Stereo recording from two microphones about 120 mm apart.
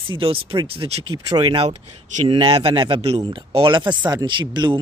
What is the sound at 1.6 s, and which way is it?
Speech, 55° right (ahead or behind).